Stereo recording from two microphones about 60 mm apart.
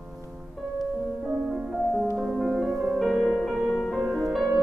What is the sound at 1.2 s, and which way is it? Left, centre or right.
Music, right.